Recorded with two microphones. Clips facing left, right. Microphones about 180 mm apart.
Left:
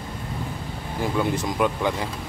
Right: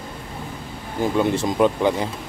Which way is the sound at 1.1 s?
25° right (ahead or behind).